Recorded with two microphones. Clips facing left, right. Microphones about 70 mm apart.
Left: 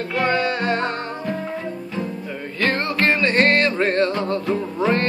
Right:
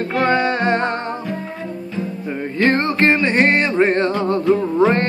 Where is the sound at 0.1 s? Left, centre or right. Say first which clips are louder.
Right 3 dB; right.